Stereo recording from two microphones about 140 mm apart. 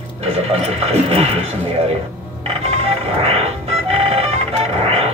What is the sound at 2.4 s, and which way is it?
Music, 45° right (ahead or behind).